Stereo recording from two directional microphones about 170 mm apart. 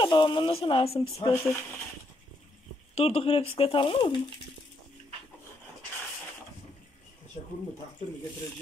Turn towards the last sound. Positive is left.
turn(degrees=50)  # may be behind; listen again after turning